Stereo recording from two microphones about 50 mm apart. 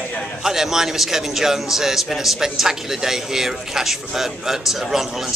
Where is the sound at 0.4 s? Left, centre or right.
Centre.